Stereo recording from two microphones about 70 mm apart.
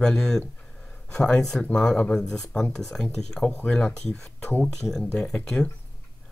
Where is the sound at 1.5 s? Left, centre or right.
Centre.